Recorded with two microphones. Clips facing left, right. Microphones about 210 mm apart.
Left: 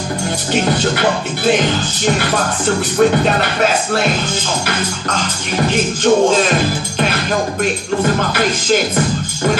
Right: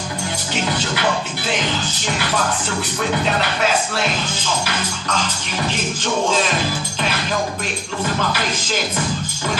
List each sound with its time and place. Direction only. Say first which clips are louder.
0.7 s speech: left 4 dB; 50° left (ahead or behind)
5.6 s speech: left 8 dB; 50° left (ahead or behind)
8.0 s music: left 5 dB; 55° left (ahead or behind)